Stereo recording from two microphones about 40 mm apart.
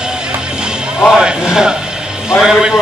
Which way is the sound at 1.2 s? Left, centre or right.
Right.